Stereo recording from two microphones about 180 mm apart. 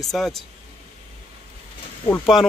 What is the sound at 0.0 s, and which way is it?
Speech, centre (ahead or behind).